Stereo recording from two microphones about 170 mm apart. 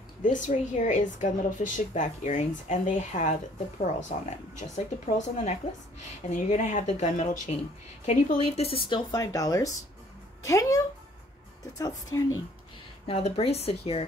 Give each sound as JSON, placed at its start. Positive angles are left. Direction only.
{"t": 0.2, "sound": "a woman's voice", "side_deg": 50}
{"t": 8.8, "sound": "speech", "side_deg": 25}
{"t": 11.8, "sound": "speech", "side_deg": 20}
{"t": 13.0, "sound": "a woman's voice", "side_deg": 35}